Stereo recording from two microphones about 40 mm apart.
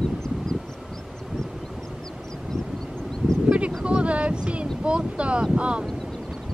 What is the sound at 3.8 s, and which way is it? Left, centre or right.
Wind noise, right.